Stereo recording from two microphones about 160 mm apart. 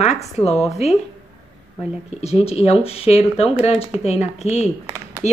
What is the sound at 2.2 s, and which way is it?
Speech, 40° left (ahead or behind).